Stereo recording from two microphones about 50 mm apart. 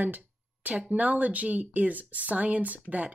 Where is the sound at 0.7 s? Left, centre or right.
Right.